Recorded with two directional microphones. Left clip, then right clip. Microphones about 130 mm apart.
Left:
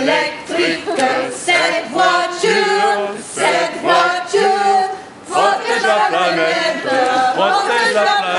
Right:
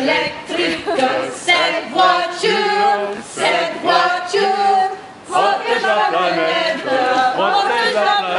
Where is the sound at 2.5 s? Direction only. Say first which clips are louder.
Left 1 dB; 25° left (ahead or behind).